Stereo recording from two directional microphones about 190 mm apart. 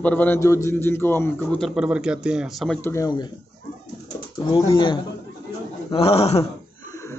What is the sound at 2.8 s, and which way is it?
Speech, 15° left (ahead or behind).